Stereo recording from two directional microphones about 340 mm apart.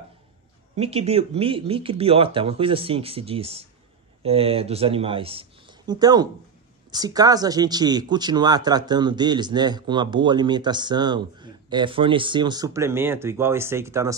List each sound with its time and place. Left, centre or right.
0.7 s speech: centre